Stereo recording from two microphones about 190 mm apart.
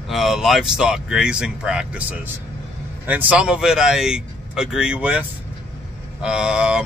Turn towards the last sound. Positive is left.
turn(degrees=-5)  # may be behind; listen again after turning